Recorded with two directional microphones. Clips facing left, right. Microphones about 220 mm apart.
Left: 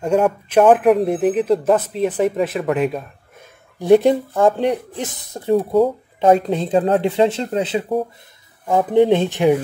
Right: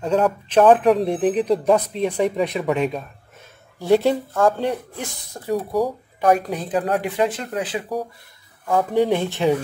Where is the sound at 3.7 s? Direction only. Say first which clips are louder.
Left 5 dB; 15° left (ahead or behind).